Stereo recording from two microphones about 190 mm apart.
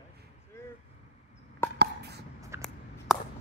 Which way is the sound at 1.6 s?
15° left (ahead or behind).